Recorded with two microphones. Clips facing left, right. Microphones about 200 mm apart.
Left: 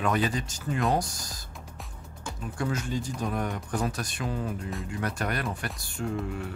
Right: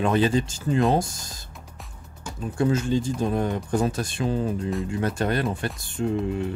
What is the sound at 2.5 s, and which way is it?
Speech, 25° right (ahead or behind).